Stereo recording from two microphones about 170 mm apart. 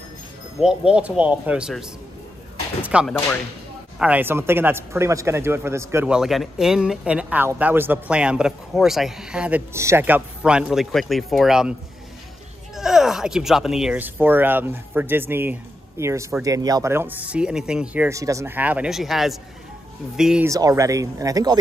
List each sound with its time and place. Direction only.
0.6 s speech: 5° right (ahead or behind)
6.1 s speech: centre (ahead or behind)
12.7 s speech: centre (ahead or behind)
20.4 s speech: 20° right (ahead or behind)